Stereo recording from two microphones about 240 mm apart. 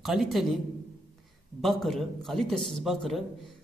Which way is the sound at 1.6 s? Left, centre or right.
Centre.